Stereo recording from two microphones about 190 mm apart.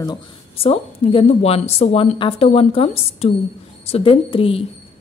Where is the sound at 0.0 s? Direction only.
25° left (ahead or behind).